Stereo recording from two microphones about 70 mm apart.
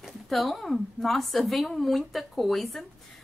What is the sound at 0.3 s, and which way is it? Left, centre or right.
Speech, centre.